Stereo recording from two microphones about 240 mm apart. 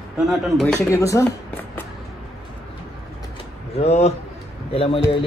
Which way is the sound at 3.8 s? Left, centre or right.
Left.